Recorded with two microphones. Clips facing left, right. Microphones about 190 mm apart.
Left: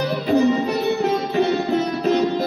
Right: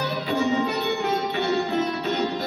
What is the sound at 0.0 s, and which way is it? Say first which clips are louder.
Music: left 7 dB; 35° left (ahead or behind).